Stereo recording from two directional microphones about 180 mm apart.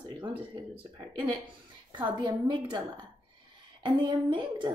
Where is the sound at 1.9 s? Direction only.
25° right (ahead or behind).